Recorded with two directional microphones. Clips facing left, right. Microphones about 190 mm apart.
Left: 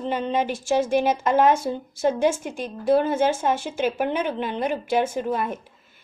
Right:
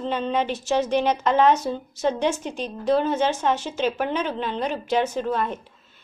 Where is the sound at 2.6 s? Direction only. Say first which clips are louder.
Left 1 dB; 10° left (ahead or behind).